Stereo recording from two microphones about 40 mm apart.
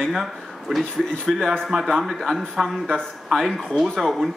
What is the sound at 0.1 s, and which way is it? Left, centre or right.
Speech, centre.